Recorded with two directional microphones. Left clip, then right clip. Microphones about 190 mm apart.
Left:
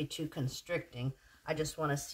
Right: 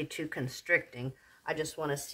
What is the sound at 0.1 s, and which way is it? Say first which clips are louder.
Speech: right 3 dB; 25° right (ahead or behind).